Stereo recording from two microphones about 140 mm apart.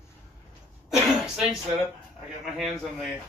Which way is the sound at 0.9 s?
5° right (ahead or behind).